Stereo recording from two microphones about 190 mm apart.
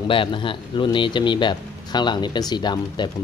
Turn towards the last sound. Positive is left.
turn(degrees=25)  # may be behind; listen again after turning